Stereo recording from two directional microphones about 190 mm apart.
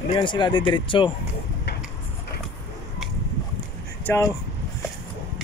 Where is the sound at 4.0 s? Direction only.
10° left (ahead or behind).